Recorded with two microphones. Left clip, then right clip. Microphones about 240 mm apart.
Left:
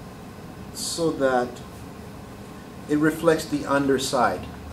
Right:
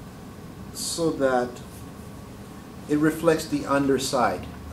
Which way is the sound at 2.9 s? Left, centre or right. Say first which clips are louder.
Left 1 dB; centre.